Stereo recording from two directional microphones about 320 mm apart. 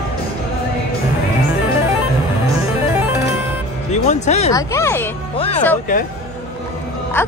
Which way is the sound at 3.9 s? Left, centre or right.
Left.